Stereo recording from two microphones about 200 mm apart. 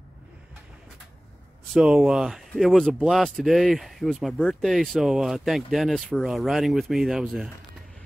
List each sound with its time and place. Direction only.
1.7 s speech: centre (ahead or behind)